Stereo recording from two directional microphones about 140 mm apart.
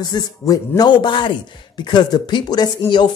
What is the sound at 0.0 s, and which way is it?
Speech, 30° left (ahead or behind).